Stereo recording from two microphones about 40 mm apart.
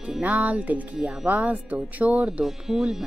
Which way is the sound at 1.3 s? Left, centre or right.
Right.